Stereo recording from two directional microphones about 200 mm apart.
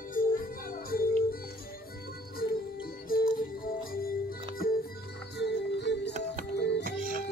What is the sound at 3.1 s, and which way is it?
Music, 45° left (ahead or behind).